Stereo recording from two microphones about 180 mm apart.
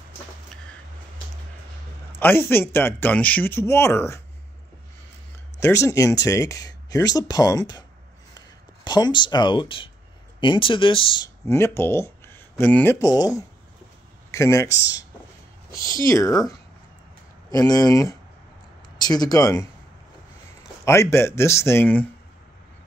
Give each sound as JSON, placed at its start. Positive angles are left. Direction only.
{"t": 2.1, "sound": "speech", "side_deg": 10}
{"t": 5.6, "sound": "speech", "side_deg": 15}
{"t": 11.4, "sound": "speech", "side_deg": 15}
{"t": 14.8, "sound": "speech", "side_deg": 75}
{"t": 16.1, "sound": "speech", "side_deg": 20}
{"t": 17.6, "sound": "speech", "side_deg": 20}
{"t": 20.8, "sound": "speech", "side_deg": 15}